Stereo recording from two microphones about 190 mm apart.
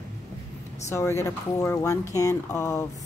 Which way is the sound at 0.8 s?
15° left (ahead or behind).